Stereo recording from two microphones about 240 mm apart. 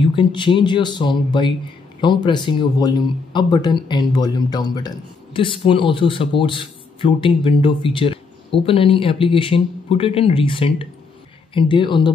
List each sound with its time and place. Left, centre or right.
0.0 s speech: left